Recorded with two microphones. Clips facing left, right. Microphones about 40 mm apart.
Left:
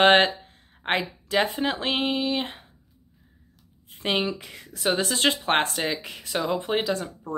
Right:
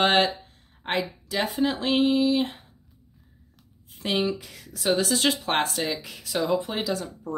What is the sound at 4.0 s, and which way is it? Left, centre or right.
Speech, left.